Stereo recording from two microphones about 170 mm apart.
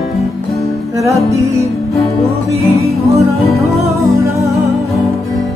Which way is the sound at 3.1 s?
Centre (ahead or behind).